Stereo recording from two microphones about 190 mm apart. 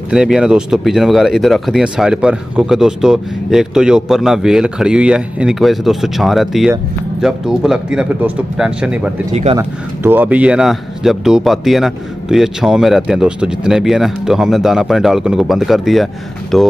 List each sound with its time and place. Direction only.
0.1 s speech: 5° right (ahead or behind)
9.3 s speech: 35° right (ahead or behind)
9.6 s speech: 10° right (ahead or behind)